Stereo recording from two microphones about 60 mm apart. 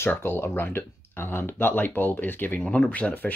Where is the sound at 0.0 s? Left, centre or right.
Left.